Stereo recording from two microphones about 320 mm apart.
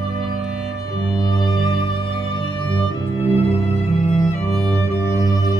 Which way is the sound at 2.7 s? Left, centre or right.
Centre.